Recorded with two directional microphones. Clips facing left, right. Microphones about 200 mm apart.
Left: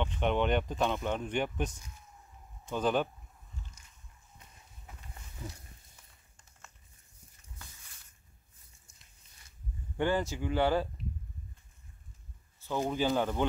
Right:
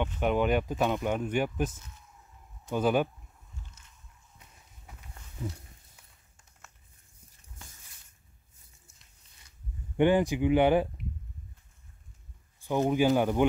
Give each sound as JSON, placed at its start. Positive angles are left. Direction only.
{"t": 0.0, "sound": "speech", "side_deg": -5}
{"t": 3.8, "sound": "a sound", "side_deg": 10}
{"t": 9.9, "sound": "speech", "side_deg": -15}
{"t": 12.5, "sound": "speech", "side_deg": -15}